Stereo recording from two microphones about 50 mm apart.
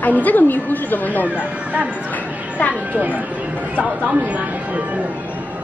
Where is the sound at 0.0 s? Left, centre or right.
Left.